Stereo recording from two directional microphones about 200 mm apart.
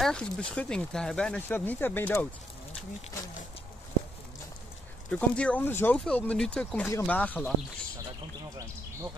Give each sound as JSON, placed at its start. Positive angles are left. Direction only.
{"t": 0.0, "sound": "speech", "side_deg": 5}
{"t": 5.1, "sound": "speech", "side_deg": 5}